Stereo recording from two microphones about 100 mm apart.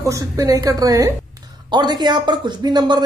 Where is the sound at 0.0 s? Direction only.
35° right (ahead or behind).